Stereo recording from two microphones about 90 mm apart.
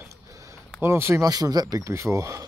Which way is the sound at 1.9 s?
35° right (ahead or behind).